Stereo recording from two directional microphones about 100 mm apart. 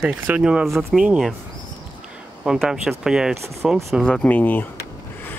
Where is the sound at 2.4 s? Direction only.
10° right (ahead or behind).